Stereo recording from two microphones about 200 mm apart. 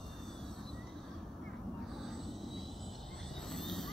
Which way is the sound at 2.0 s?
Centre (ahead or behind).